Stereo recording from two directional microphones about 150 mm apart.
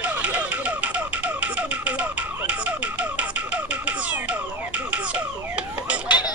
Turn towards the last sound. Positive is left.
turn(degrees=-10)  # may be behind; listen again after turning